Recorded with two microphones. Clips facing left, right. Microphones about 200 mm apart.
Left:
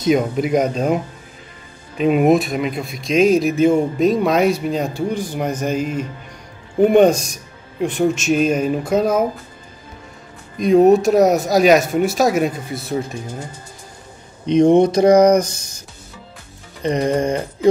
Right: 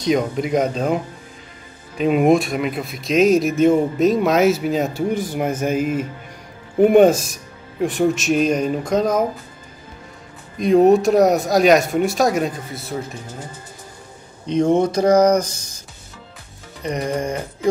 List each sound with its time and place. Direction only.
0.0 s speech: 5° left (ahead or behind)
10.6 s speech: centre (ahead or behind)
14.4 s speech: 15° left (ahead or behind)
16.8 s music: 25° left (ahead or behind)